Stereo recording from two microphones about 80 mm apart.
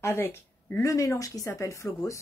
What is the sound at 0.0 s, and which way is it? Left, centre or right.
Speech, left.